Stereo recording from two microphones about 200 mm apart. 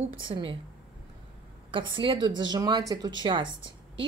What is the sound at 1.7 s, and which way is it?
A woman's voice, 25° right (ahead or behind).